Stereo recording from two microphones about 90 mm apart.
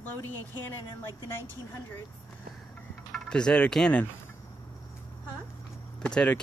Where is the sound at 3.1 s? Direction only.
10° left (ahead or behind).